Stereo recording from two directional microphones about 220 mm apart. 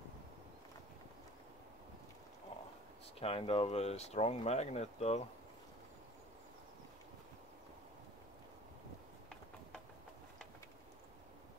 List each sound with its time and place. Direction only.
3.2 s speech: 25° left (ahead or behind)